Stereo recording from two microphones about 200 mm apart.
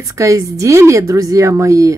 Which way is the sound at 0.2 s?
15° right (ahead or behind).